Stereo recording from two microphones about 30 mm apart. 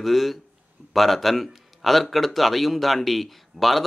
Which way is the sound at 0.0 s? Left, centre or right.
Centre.